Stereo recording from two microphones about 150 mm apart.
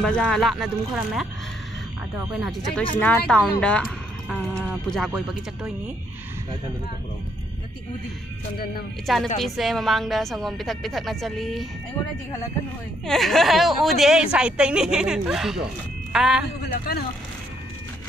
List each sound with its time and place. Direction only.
0.0 s a woman's voice: 5° left (ahead or behind)
9.0 s a woman's voice: centre (ahead or behind)
13.0 s a woman's voice: centre (ahead or behind)
16.6 s speech: 85° left